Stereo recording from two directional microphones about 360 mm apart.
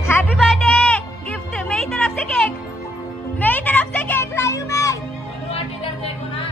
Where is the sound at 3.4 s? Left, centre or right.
Centre.